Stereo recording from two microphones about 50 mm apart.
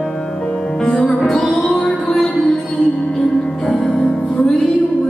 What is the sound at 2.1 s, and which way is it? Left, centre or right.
Music, centre.